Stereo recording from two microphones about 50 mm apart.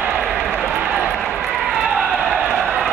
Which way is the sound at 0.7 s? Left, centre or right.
Right.